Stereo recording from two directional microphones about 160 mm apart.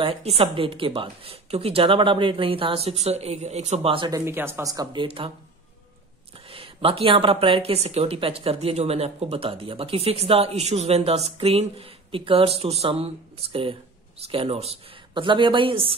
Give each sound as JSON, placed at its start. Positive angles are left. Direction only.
{"t": 0.0, "sound": "speech", "side_deg": -40}
{"t": 4.1, "sound": "speech", "side_deg": -15}
{"t": 6.5, "sound": "speech", "side_deg": -35}